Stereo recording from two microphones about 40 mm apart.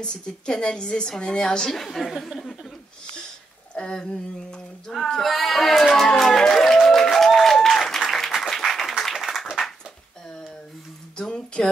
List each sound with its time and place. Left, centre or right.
0.0 s a woman's voice: left
1.8 s speech: centre
3.7 s speech: left
5.2 s speech: centre
6.4 s music: centre
7.3 s applause: centre
11.1 s a sound: left